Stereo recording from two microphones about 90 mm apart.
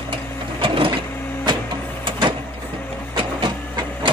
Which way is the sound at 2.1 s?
70° right (ahead or behind).